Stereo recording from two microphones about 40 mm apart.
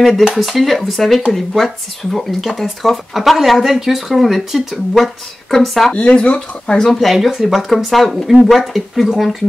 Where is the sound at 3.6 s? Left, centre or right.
Centre.